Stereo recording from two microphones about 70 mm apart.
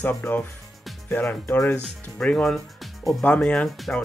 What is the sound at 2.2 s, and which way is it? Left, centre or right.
Speech, centre.